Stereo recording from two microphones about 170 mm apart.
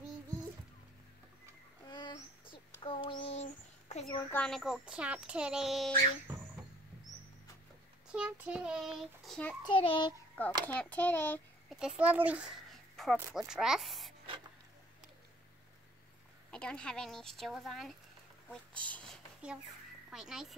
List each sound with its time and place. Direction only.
1.9 s child singing: 25° left (ahead or behind)
3.9 s a sound: 45° left (ahead or behind)
4.3 s a child's voice: 5° left (ahead or behind)
8.1 s a child's voice: 5° right (ahead or behind)
9.6 s a child's voice: 30° left (ahead or behind)
10.4 s a child's voice: 10° left (ahead or behind)
11.7 s speech: 5° right (ahead or behind)
16.4 s a child's voice: 5° left (ahead or behind)
19.0 s a sound: 5° right (ahead or behind)
20.1 s a child's voice: centre (ahead or behind)